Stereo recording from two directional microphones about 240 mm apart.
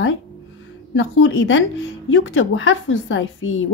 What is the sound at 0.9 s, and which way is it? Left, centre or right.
A woman's voice, left.